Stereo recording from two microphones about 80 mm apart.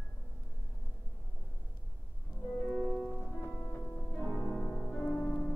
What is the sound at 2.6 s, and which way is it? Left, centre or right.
Music, centre.